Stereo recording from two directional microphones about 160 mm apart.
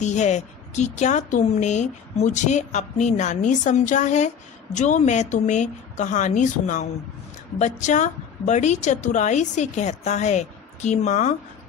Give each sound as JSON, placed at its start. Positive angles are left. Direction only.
{"t": 0.0, "sound": "a woman's voice", "side_deg": 45}